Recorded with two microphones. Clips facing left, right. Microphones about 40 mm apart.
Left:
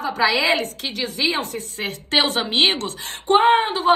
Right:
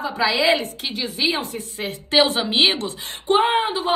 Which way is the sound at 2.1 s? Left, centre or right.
Left.